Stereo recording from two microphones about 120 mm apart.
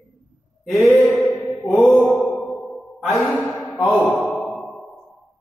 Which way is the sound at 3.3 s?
15° left (ahead or behind).